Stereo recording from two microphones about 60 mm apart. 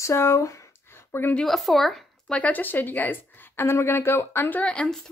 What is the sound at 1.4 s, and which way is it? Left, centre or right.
Speech, centre.